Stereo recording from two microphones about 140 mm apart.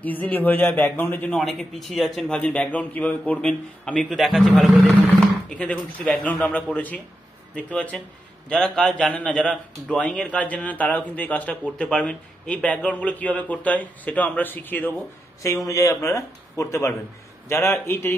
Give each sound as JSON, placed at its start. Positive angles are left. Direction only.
{"t": 0.0, "sound": "a man's voice", "side_deg": 10}
{"t": 1.4, "sound": "a man's voice", "side_deg": 0}